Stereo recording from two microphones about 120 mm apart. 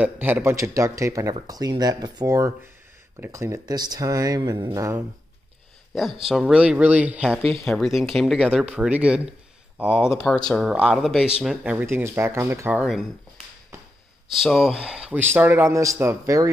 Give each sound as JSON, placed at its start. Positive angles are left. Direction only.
{"t": 0.0, "sound": "speech", "side_deg": -15}
{"t": 6.2, "sound": "speech", "side_deg": -5}
{"t": 7.5, "sound": "speech", "side_deg": 5}
{"t": 10.2, "sound": "speech", "side_deg": 5}
{"t": 10.6, "sound": "speech", "side_deg": -5}
{"t": 11.4, "sound": "speech", "side_deg": -15}
{"t": 14.3, "sound": "speech", "side_deg": 0}